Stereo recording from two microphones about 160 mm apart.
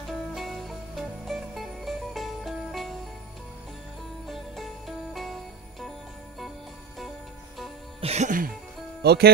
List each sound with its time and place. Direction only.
0.3 s music: centre (ahead or behind)
4.3 s music: centre (ahead or behind)
8.0 s music: 45° right (ahead or behind)
9.0 s speech: 90° right